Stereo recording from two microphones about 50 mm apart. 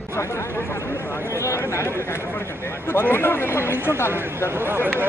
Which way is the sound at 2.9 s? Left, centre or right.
Left.